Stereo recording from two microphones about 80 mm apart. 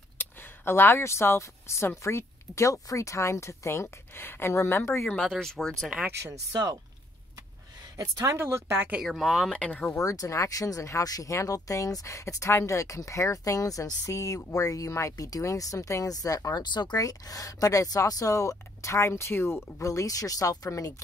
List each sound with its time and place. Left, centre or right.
0.2 s speech: left
5.0 s speech: centre
6.5 s speech: right
8.0 s speech: right
8.4 s speech: right
9.0 s speech: centre
9.5 s speech: centre
9.9 s speech: left
16.9 s speech: left